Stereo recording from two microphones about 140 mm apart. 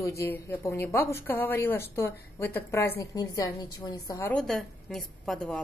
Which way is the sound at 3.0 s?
25° left (ahead or behind).